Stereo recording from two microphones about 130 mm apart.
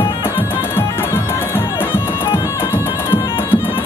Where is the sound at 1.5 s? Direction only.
20° left (ahead or behind).